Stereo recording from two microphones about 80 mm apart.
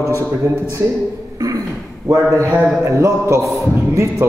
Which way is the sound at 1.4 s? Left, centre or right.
Right.